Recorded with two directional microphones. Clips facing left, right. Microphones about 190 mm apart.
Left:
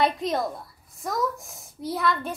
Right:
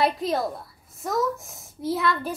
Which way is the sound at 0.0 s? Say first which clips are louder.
Right 1 dB; centre (ahead or behind).